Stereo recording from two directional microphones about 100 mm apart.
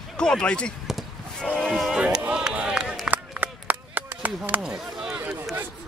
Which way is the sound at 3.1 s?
15° right (ahead or behind).